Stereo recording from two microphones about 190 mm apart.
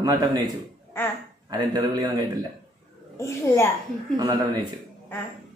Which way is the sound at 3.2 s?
15° left (ahead or behind).